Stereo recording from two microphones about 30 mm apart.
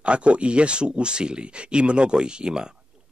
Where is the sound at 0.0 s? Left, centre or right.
Right.